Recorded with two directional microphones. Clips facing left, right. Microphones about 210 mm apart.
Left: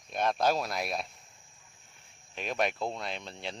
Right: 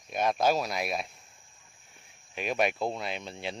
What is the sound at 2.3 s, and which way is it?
Speech, 5° right (ahead or behind).